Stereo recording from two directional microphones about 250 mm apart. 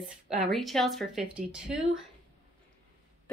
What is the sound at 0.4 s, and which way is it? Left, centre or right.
Speech, centre.